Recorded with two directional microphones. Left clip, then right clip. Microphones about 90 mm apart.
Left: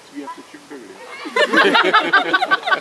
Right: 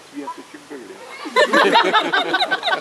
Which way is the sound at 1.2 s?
25° left (ahead or behind).